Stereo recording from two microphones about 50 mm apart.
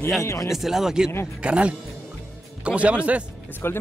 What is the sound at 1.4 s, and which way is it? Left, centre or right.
A man's voice, right.